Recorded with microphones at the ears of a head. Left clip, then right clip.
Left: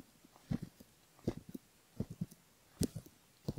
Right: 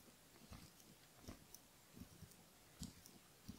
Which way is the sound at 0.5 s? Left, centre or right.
Left.